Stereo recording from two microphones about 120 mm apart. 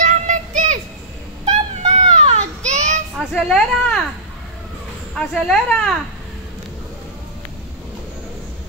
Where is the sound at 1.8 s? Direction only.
65° right (ahead or behind).